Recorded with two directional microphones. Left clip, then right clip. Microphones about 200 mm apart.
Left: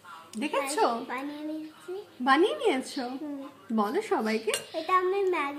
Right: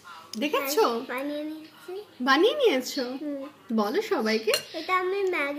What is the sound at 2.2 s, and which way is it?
A woman's voice, 20° left (ahead or behind).